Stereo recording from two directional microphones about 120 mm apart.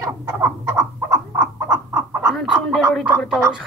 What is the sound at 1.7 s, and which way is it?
Chicken, 30° right (ahead or behind).